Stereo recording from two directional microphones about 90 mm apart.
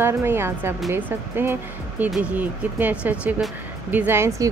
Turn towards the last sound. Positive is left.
turn(degrees=-25)  # may be behind; listen again after turning